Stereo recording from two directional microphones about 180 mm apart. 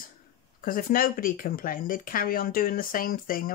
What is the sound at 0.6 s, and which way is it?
Speech, 50° left (ahead or behind).